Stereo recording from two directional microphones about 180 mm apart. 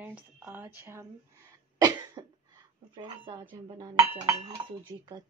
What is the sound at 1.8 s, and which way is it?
Cough, 25° right (ahead or behind).